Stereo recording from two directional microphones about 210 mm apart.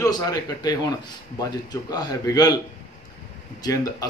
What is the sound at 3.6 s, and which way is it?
Speech, 20° left (ahead or behind).